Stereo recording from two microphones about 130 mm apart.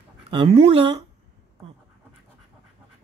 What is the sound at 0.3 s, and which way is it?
Speech, 45° right (ahead or behind).